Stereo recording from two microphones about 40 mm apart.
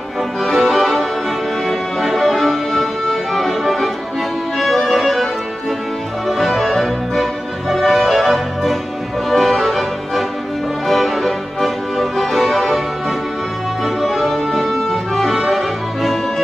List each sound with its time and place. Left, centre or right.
0.4 s music: centre
13.8 s music: centre